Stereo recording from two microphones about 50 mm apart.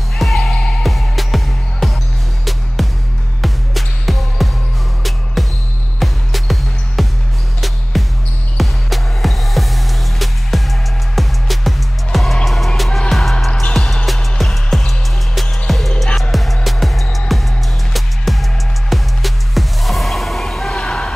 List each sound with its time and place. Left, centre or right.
0.2 s music: centre
7.9 s basketball bounce: centre
8.5 s music: centre
13.5 s music: left
14.0 s music: centre